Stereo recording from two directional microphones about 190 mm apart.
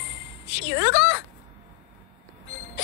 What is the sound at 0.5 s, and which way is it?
Music, 80° left.